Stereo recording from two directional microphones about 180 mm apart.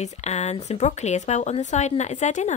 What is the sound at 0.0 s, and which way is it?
Speech, 40° left (ahead or behind).